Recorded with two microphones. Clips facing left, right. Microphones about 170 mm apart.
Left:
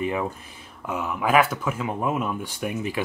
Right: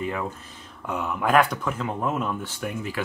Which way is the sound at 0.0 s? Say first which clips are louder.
Left 3 dB; 15° left (ahead or behind).